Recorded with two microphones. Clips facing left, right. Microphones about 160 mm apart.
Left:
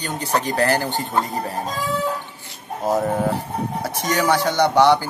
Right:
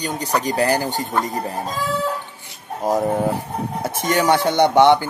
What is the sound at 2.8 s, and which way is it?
Speech, 15° right (ahead or behind).